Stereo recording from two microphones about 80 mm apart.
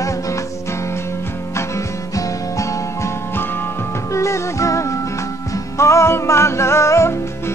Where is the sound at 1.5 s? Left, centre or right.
Left.